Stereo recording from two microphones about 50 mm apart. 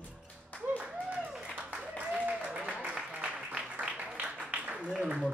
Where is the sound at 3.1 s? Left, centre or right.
Right.